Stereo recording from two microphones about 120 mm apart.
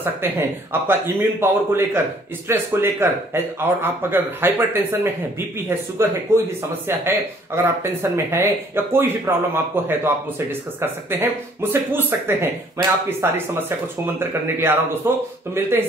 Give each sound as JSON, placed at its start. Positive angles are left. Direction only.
{"t": 0.2, "sound": "speech", "side_deg": -20}